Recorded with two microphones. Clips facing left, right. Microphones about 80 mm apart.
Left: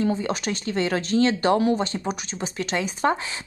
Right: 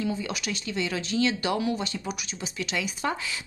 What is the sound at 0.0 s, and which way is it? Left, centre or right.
A woman's voice, left.